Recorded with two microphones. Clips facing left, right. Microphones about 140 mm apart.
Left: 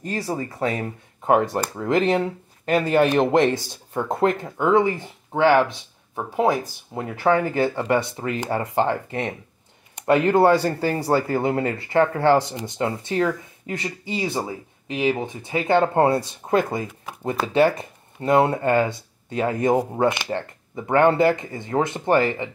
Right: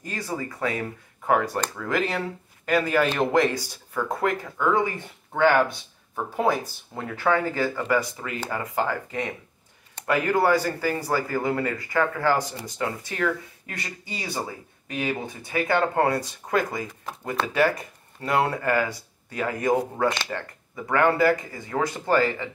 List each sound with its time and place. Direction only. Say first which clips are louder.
0.0 s speech: left 4 dB; 30° left (ahead or behind)